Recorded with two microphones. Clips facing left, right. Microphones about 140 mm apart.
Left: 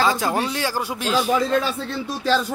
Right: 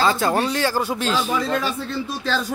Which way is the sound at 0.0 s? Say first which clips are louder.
Right 1 dB; 10° left (ahead or behind).